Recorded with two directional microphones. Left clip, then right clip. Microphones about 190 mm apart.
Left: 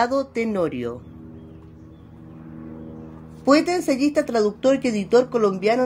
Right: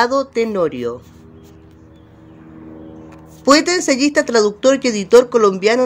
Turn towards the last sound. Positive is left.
turn(degrees=-15)  # may be behind; listen again after turning